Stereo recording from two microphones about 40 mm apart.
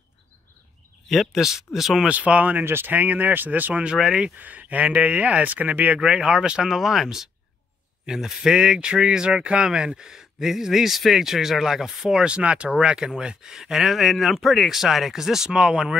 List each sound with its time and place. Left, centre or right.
1.3 s speech: centre
2.0 s speech: right
2.6 s speech: right
2.9 s speech: right
3.9 s speech: centre
4.4 s speech: right
5.9 s speech: centre
6.7 s speech: centre
13.8 s speech: centre